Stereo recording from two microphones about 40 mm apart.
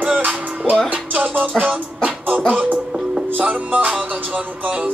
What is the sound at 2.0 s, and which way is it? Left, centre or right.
Beatboxing, right.